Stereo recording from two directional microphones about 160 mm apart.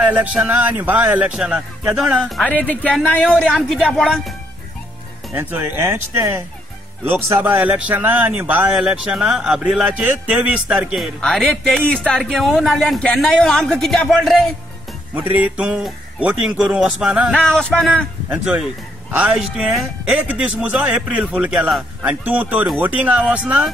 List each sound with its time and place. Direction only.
0.0 s speech: 10° right (ahead or behind)
5.3 s a man's voice: 15° right (ahead or behind)
15.1 s speech: 10° right (ahead or behind); by 18.0 s 5° left (ahead or behind)
18.3 s a man's voice: 5° right (ahead or behind)